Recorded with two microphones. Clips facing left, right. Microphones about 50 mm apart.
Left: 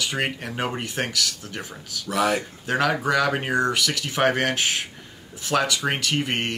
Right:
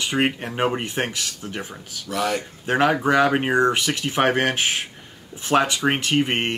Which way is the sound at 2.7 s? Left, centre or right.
Right.